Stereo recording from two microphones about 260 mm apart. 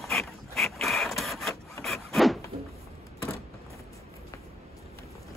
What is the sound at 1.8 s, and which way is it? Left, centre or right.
Wood, centre.